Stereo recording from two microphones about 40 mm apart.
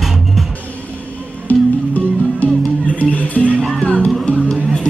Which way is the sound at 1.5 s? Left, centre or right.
Left.